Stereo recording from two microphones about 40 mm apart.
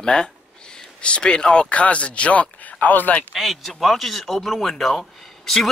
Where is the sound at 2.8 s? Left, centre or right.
Left.